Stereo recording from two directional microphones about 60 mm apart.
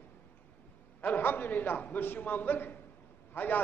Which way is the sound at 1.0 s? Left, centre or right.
Left.